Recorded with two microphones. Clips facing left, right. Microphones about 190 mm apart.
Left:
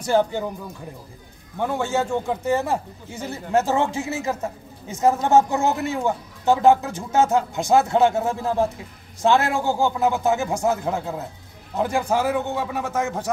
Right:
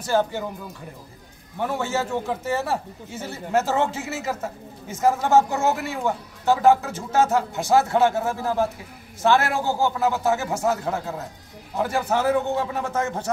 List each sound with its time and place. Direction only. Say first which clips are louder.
0.0 s speech: left 2 dB; 15° left (ahead or behind)
1.6 s speech: left 2 dB; 15° left (ahead or behind)